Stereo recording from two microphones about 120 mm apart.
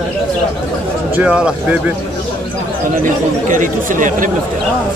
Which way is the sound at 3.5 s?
90° right.